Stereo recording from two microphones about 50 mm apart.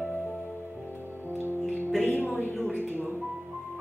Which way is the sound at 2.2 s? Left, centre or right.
Right.